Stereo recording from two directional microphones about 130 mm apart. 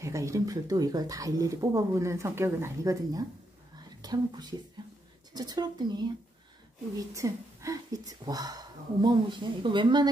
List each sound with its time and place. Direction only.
0.0 s speech: 25° right (ahead or behind)